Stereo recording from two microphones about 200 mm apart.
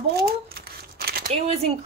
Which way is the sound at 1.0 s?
50° right (ahead or behind).